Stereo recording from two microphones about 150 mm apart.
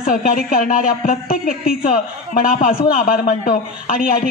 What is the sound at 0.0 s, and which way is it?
A woman's voice, 60° left (ahead or behind).